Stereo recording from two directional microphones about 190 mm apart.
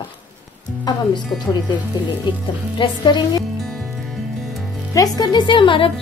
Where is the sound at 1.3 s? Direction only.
25° left (ahead or behind).